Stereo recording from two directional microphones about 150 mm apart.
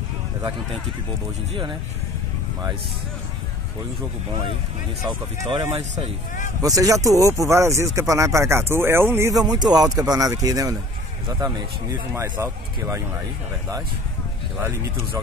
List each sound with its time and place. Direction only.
5.0 s speech: 35° right (ahead or behind)
6.6 s speech: 25° right (ahead or behind)
12.2 s speech: 20° right (ahead or behind)